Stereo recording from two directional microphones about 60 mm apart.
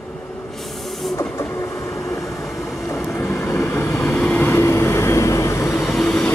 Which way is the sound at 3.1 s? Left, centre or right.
Left.